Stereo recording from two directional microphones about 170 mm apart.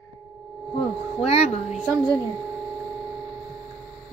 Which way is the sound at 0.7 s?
35° left (ahead or behind).